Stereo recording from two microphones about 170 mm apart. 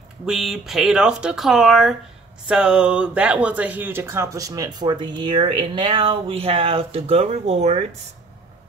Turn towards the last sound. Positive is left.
turn(degrees=-40)  # may be behind; listen again after turning